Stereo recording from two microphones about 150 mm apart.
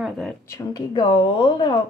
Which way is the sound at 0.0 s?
Centre (ahead or behind).